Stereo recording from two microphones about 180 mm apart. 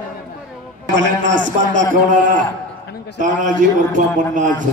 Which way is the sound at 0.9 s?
90° right.